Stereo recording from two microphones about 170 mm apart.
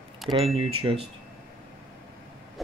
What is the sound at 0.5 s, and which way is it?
Speech, 35° right (ahead or behind).